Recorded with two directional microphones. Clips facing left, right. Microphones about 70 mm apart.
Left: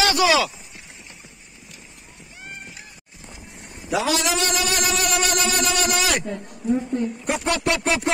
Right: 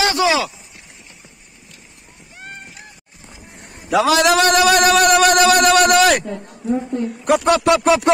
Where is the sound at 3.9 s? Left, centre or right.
Right.